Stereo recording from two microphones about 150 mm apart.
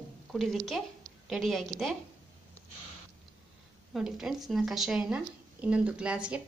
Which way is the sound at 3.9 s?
5° right (ahead or behind).